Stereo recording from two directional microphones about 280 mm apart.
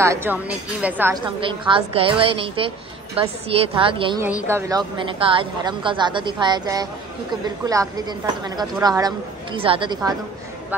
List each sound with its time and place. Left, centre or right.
0.0 s a man's voice: centre
1.4 s a woman's voice: centre